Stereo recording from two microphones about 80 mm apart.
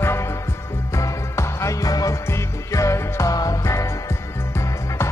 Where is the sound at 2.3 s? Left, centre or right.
Left.